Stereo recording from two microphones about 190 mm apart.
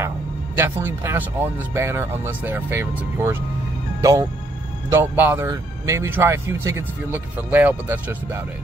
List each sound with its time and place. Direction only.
0.6 s speech: 10° right (ahead or behind)